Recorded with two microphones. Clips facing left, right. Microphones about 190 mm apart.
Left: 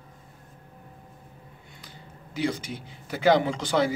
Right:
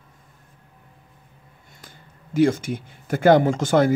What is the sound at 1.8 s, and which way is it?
Speech, 50° right (ahead or behind).